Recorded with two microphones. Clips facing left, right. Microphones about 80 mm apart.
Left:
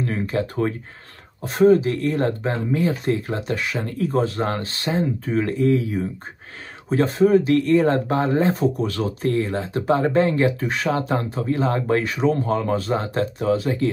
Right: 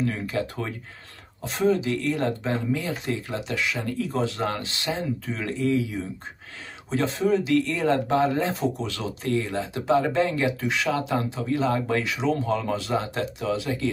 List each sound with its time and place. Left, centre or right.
0.0 s speech: left